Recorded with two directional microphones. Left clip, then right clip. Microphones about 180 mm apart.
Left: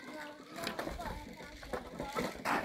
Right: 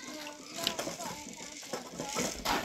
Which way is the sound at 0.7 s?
50° right (ahead or behind).